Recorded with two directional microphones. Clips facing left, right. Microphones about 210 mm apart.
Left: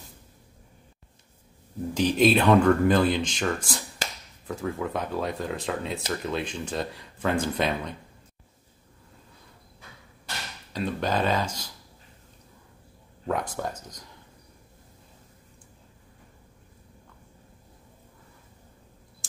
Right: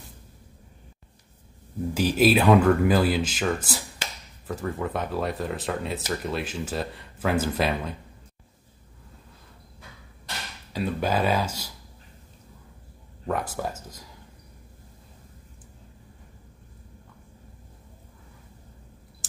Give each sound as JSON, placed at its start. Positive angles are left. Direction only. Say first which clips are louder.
{"t": 2.0, "sound": "speech", "louder": "even", "side_deg": -5}
{"t": 10.7, "sound": "speech", "louder": "right 1 dB", "side_deg": -10}
{"t": 13.3, "sound": "speech", "louder": "even", "side_deg": -5}